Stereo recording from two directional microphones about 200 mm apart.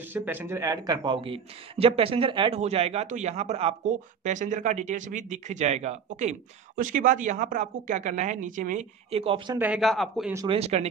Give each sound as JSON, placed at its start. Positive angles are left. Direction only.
{"t": 0.1, "sound": "a man's voice", "side_deg": -10}
{"t": 9.1, "sound": "speech", "side_deg": -30}
{"t": 9.6, "sound": "a man's voice", "side_deg": -5}
{"t": 10.3, "sound": "speech", "side_deg": -20}
{"t": 10.6, "sound": "a man's voice", "side_deg": -30}